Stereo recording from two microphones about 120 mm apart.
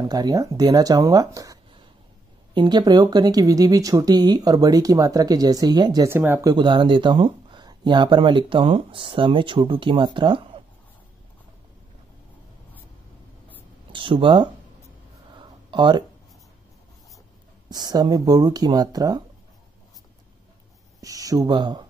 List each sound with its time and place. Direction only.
0.0 s speech: 30° right (ahead or behind)
6.0 s speech: 20° right (ahead or behind)
6.4 s speech: 40° right (ahead or behind)
13.9 s speech: 45° right (ahead or behind)
15.3 s a sound: 40° right (ahead or behind)
17.6 s speech: 35° right (ahead or behind)
21.0 s speech: 30° right (ahead or behind)